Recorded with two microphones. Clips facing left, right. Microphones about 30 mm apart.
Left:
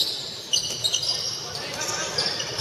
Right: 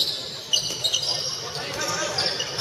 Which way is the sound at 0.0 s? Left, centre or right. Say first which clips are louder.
Right 1 dB; centre.